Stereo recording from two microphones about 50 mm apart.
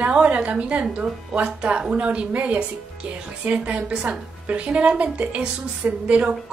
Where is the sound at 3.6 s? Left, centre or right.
Centre.